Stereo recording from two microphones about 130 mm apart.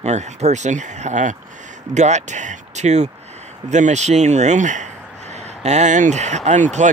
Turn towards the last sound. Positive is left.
turn(degrees=-70)  # may be behind; listen again after turning